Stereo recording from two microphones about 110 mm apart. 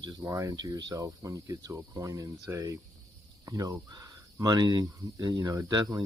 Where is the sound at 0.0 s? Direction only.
35° right (ahead or behind).